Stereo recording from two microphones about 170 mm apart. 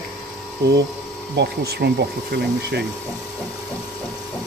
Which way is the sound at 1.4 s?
80° right.